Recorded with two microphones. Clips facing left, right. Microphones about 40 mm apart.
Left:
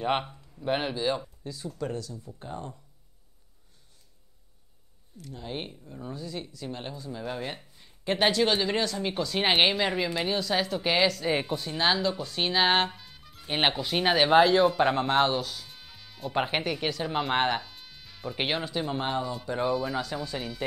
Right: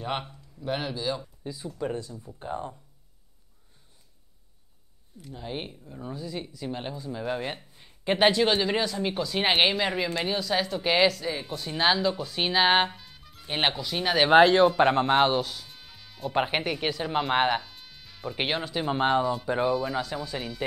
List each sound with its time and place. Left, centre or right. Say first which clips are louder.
0.0 s speech: left 4 dB; centre
1.4 s speech: right 2 dB; centre
5.1 s speech: right 1 dB; centre
13.7 s speech: left 2 dB; left
14.3 s speech: right 3 dB; centre
14.9 s speech: right 2 dB; centre
18.9 s speech: right 9 dB; centre
19.6 s speech: left 1 dB; centre